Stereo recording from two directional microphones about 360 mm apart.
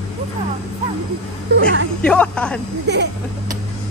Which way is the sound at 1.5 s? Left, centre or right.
Right.